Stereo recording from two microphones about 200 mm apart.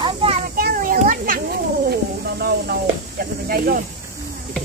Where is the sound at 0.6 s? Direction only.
45° right (ahead or behind).